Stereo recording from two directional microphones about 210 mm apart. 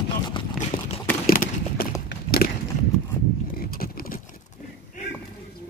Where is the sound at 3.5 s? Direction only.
45° left (ahead or behind).